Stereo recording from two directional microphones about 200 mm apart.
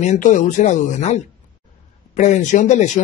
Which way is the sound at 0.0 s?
40° left (ahead or behind).